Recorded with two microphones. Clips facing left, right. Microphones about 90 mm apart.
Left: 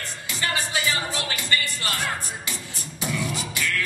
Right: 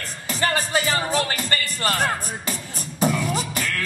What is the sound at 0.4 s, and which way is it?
Music, 45° right (ahead or behind).